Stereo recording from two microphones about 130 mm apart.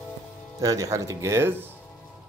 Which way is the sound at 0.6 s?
25° right (ahead or behind).